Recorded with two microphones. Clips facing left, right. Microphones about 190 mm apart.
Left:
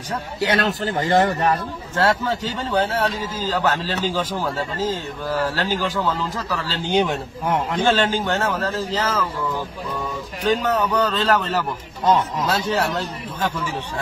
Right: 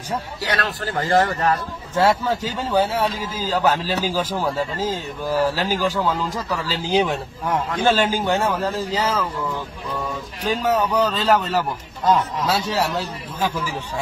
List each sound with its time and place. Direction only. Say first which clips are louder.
0.4 s speech: left 9 dB; 25° left (ahead or behind)
2.0 s a man's voice: right 2 dB; 10° right (ahead or behind)
6.8 s a man's voice: left 1 dB; centre (ahead or behind)
10.5 s a man's voice: even; 10° right (ahead or behind)